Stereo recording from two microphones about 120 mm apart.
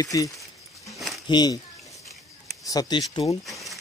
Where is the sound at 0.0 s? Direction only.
30° left (ahead or behind).